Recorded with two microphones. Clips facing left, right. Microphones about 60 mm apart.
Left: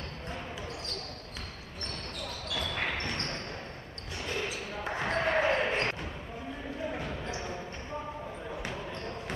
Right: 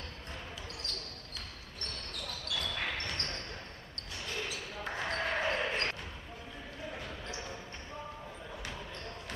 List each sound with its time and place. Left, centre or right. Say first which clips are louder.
2.5 s basketball bounce: left 3 dB; left